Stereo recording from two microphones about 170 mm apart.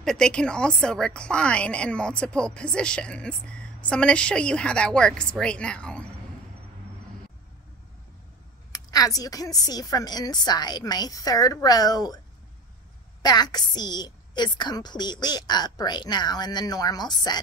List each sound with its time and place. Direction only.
0.0 s a woman's voice: 5° left (ahead or behind)
8.7 s a woman's voice: 20° left (ahead or behind)
13.2 s a woman's voice: 25° left (ahead or behind)